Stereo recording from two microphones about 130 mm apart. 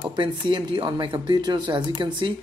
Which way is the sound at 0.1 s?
35° right (ahead or behind).